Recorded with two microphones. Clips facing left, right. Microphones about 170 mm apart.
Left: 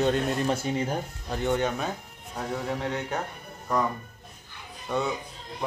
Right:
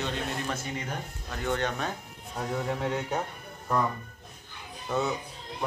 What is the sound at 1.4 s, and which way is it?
Speech, 10° left (ahead or behind).